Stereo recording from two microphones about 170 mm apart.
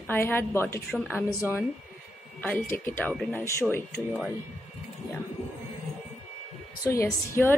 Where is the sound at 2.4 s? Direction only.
10° left (ahead or behind).